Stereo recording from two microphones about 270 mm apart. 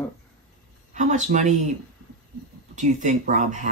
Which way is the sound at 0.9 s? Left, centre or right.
Right.